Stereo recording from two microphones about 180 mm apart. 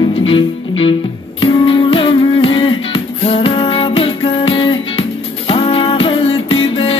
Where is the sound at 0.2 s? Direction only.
30° left (ahead or behind).